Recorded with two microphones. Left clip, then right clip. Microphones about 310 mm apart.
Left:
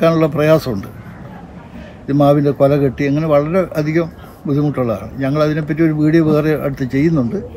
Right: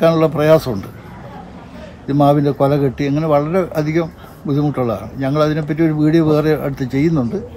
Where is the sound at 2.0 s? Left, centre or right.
Centre.